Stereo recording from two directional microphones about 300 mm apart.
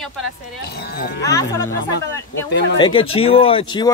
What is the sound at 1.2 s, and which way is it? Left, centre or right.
Speech, centre.